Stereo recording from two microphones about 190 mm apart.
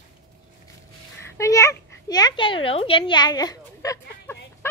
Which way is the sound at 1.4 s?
15° left (ahead or behind).